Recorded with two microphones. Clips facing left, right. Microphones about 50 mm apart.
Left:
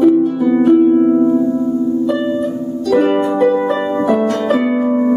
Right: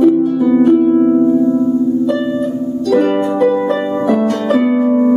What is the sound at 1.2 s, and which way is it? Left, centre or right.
Music, left.